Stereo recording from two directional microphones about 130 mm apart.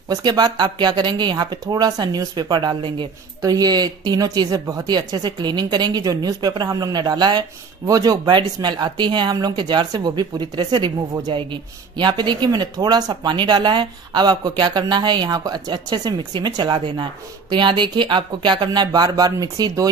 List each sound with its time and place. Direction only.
0.1 s speech: 30° right (ahead or behind)